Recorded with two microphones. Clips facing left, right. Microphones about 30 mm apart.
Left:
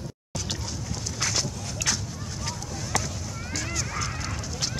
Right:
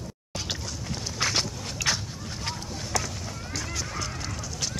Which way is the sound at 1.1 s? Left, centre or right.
Right.